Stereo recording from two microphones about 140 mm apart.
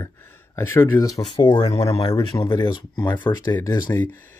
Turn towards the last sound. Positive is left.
turn(degrees=10)  # may be behind; listen again after turning